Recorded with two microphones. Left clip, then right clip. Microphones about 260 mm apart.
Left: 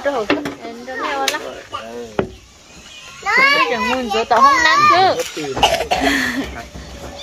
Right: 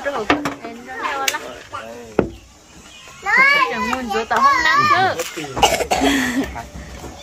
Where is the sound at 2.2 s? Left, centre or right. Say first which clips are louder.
Right 2 dB; right.